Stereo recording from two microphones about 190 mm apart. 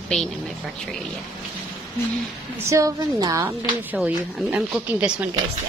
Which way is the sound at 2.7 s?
15° right (ahead or behind).